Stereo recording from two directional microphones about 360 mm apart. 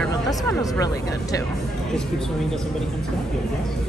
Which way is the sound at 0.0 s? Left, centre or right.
Centre.